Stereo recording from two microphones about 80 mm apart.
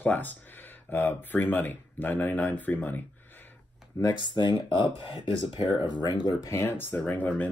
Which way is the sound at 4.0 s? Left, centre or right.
Left.